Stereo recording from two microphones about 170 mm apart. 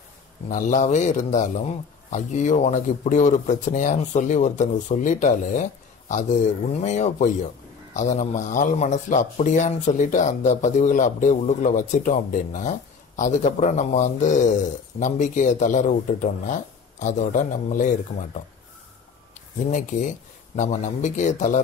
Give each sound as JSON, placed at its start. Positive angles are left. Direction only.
{"t": 0.5, "sound": "a man's voice", "side_deg": 50}
{"t": 19.7, "sound": "a man's voice", "side_deg": 45}